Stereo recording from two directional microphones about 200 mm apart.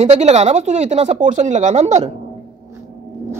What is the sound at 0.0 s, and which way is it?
Speech, 35° right (ahead or behind).